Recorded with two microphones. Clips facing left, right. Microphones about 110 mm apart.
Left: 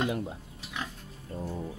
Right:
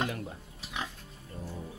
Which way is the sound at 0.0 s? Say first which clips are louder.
Left 4 dB; 20° left (ahead or behind).